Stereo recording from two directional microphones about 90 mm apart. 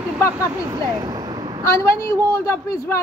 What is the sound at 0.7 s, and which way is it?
Vehicle, 50° right (ahead or behind).